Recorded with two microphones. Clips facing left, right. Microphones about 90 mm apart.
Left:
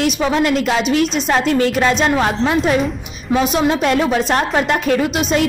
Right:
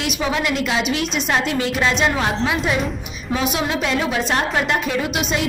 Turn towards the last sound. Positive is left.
turn(degrees=50)  # may be behind; listen again after turning